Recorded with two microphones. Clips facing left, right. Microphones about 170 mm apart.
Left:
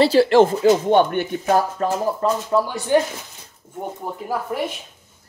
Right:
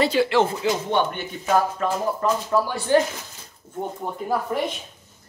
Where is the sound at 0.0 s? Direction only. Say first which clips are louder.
Left 6 dB; 40° left (ahead or behind).